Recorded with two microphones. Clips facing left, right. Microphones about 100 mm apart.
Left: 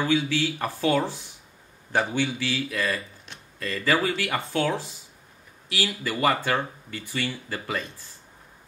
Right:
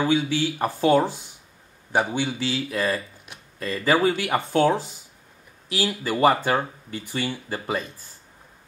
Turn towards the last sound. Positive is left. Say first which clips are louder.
# right 3 dB
turn(degrees=-25)  # may be behind; listen again after turning